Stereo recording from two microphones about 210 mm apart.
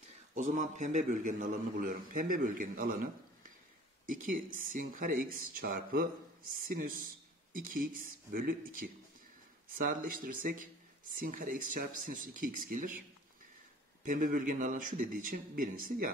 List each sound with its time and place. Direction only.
0.3 s a man's voice: 35° right (ahead or behind)
14.0 s a man's voice: 40° right (ahead or behind)